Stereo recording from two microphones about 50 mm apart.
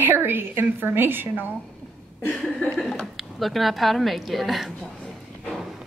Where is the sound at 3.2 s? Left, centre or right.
Centre.